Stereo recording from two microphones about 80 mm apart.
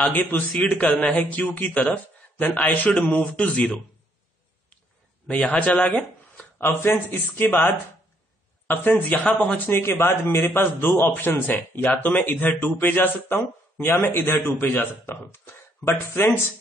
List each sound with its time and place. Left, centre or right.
0.0 s a man's voice: left
5.3 s a man's voice: centre
13.9 s a man's voice: left